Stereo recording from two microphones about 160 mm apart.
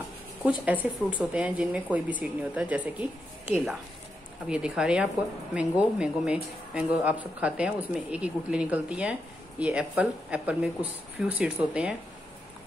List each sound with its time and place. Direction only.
0.4 s a woman's voice: 10° right (ahead or behind)
4.5 s a woman's voice: 5° right (ahead or behind)